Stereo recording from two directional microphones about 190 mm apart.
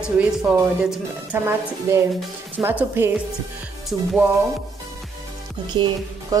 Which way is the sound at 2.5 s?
10° right (ahead or behind).